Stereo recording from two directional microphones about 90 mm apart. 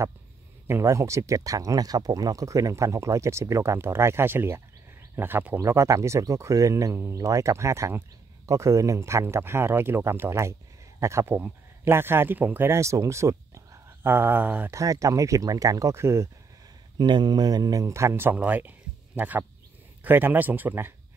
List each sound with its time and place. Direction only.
0.7 s speech: 30° right (ahead or behind)
5.6 s speech: 35° right (ahead or behind); by 14.7 s 20° right (ahead or behind)
14.7 s speech: 35° right (ahead or behind)
17.0 s speech: 55° right (ahead or behind); by 20.9 s 25° right (ahead or behind)